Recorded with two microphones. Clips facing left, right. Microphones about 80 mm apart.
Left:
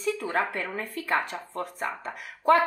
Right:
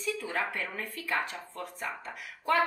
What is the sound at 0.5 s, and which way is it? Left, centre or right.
A woman's voice, left.